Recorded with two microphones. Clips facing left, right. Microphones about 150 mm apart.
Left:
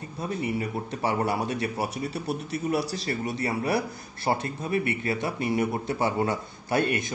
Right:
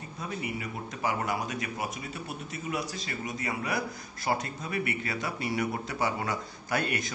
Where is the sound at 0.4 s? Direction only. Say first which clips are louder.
Left 8 dB; 35° left (ahead or behind).